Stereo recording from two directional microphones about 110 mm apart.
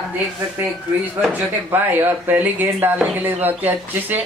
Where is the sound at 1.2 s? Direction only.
15° right (ahead or behind).